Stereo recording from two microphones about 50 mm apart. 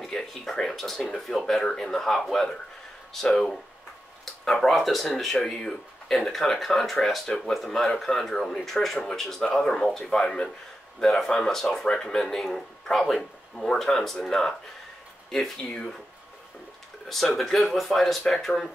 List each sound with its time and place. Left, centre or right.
0.0 s speech: centre
11.1 s speech: centre
15.7 s speech: centre
17.4 s speech: centre